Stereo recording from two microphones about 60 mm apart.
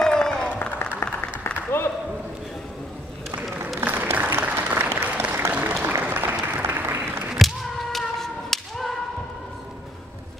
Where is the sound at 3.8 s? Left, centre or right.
Right.